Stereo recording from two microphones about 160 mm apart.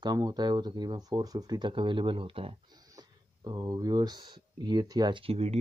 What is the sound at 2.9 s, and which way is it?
Speech, 25° right (ahead or behind).